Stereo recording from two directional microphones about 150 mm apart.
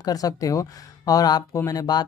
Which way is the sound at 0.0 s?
25° left (ahead or behind).